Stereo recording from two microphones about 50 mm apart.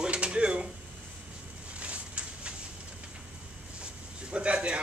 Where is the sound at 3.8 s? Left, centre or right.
Centre.